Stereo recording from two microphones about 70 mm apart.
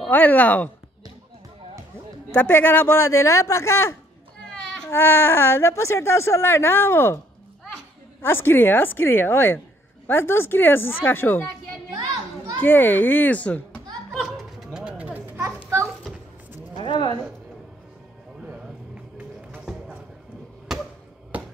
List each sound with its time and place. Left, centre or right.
0.1 s a child's voice: left
2.3 s speech: left
8.2 s speech: left
12.5 s a child's voice: left
14.1 s music: centre
14.7 s a sound: centre
15.0 s a sound: right
15.3 s a sound: right
20.7 s basketball bounce: centre
21.3 s finger snapping: right